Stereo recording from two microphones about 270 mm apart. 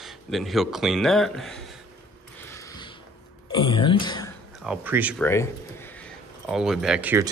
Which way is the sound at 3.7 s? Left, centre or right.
Centre.